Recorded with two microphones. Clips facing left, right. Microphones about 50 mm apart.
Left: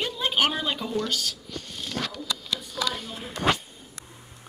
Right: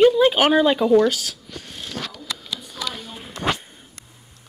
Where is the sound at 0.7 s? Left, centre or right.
Right.